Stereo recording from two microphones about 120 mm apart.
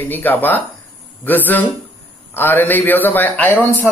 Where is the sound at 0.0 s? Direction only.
15° left (ahead or behind).